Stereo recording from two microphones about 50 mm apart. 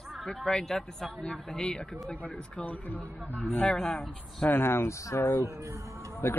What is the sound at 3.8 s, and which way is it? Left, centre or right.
Speech, centre.